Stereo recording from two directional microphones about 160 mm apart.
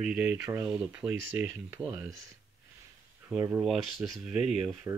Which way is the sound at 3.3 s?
15° right (ahead or behind).